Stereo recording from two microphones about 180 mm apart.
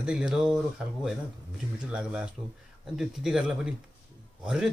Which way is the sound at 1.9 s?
5° right (ahead or behind).